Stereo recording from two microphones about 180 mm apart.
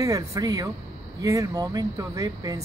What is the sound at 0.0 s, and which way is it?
Speech, 20° right (ahead or behind).